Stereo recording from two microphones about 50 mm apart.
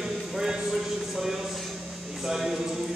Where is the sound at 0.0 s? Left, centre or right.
Centre.